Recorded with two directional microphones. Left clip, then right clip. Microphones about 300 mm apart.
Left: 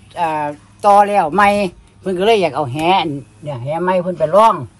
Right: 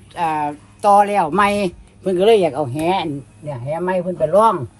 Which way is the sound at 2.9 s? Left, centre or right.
Left.